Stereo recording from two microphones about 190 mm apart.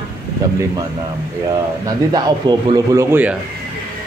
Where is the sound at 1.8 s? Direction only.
20° right (ahead or behind).